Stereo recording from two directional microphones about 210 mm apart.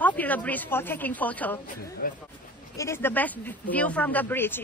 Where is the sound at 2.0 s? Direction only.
40° left (ahead or behind).